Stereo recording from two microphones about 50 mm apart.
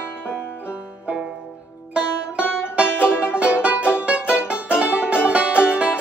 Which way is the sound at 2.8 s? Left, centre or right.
Left.